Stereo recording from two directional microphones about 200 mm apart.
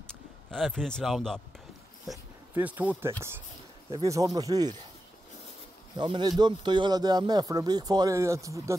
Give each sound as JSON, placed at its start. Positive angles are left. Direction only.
{"t": 0.0, "sound": "speech", "side_deg": 0}
{"t": 2.5, "sound": "speech", "side_deg": -10}
{"t": 5.9, "sound": "speech", "side_deg": -25}